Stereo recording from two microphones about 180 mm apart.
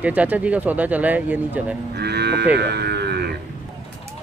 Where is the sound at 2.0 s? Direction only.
65° right (ahead or behind).